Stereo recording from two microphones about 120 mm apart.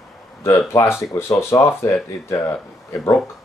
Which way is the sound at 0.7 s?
20° left (ahead or behind).